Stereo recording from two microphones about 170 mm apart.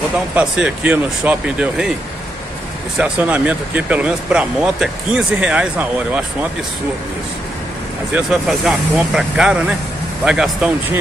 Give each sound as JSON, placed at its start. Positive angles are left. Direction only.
{"t": 0.3, "sound": "speech", "side_deg": -5}
{"t": 3.0, "sound": "speech", "side_deg": -10}
{"t": 8.1, "sound": "speech", "side_deg": 0}